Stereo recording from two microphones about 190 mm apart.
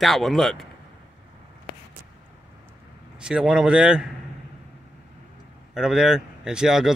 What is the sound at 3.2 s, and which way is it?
Speech, 5° right (ahead or behind).